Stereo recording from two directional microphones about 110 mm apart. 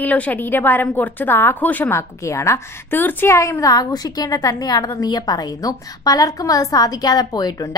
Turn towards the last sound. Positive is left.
turn(degrees=35)  # may be behind; listen again after turning